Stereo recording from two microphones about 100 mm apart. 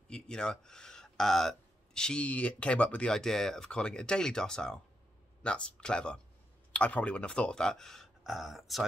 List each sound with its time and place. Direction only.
0.1 s speech: 10° left (ahead or behind)